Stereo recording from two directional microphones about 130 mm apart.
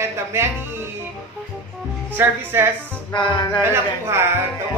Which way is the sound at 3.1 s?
35° left (ahead or behind).